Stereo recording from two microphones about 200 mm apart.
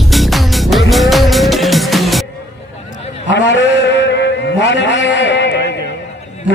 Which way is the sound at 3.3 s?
65° left (ahead or behind).